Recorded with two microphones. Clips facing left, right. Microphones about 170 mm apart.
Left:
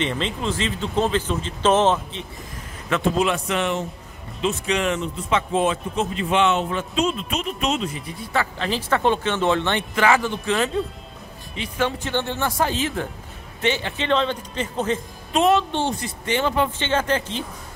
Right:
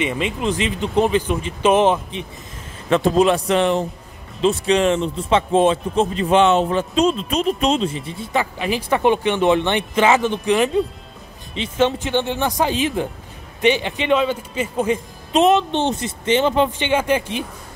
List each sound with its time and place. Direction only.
0.0 s speech: 10° right (ahead or behind)
2.9 s speech: 35° right (ahead or behind); by 15.0 s 10° right (ahead or behind)
15.3 s speech: 20° right (ahead or behind)